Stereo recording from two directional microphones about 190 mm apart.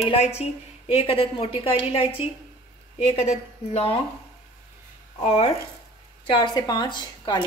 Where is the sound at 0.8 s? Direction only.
30° left (ahead or behind).